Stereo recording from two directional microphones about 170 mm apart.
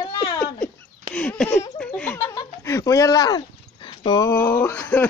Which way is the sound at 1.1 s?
5° left (ahead or behind).